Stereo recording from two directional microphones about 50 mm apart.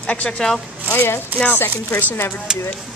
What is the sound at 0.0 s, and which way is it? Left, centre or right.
Speech, left.